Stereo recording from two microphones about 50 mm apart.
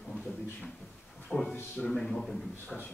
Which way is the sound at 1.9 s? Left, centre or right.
Centre.